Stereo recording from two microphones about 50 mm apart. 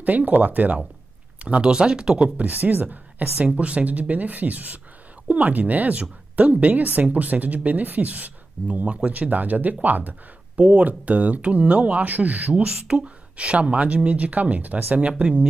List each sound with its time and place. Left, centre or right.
0.0 s speech: right
1.4 s speech: right
2.4 s speech: right
12.6 s speech: centre